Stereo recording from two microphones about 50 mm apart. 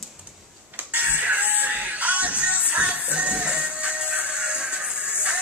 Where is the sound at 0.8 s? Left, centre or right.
Right.